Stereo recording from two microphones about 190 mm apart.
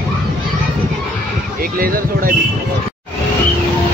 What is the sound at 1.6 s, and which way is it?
Speech, 50° right (ahead or behind).